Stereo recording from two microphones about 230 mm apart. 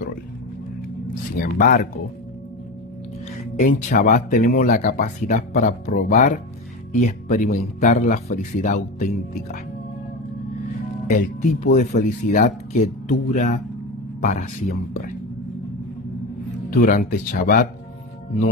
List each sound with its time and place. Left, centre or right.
1.3 s speech: left
3.5 s speech: left
11.1 s speech: left
16.7 s speech: left